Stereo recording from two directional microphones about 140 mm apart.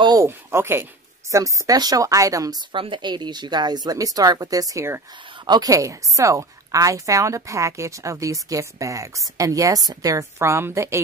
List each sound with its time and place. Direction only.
0.0 s a woman's voice: 25° right (ahead or behind)
0.3 s a woman's voice: 15° right (ahead or behind)
2.7 s a woman's voice: 35° right (ahead or behind); by 11.0 s 20° right (ahead or behind)